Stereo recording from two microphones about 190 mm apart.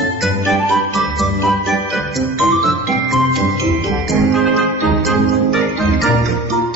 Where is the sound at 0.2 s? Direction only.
Centre (ahead or behind).